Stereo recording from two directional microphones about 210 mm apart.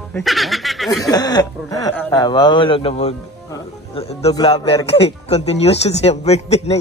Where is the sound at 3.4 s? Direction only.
15° left (ahead or behind).